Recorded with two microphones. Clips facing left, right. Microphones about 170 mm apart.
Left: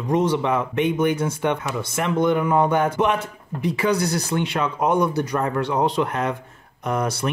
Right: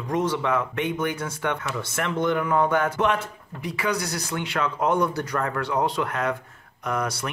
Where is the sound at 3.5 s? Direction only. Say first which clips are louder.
Left 6 dB; 25° left (ahead or behind).